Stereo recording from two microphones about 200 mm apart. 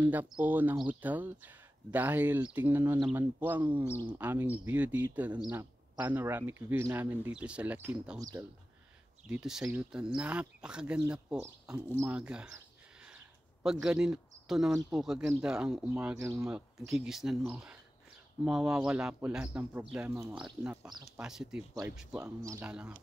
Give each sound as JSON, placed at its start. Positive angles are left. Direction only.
{"t": 0.0, "sound": "speech", "side_deg": -10}
{"t": 3.8, "sound": "speech", "side_deg": 10}
{"t": 4.2, "sound": "speech", "side_deg": -10}
{"t": 9.3, "sound": "speech", "side_deg": -5}
{"t": 11.6, "sound": "a sound", "side_deg": -10}
{"t": 14.9, "sound": "speech", "side_deg": -5}